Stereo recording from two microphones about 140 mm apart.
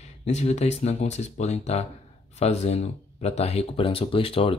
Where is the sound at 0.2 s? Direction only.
50° left (ahead or behind).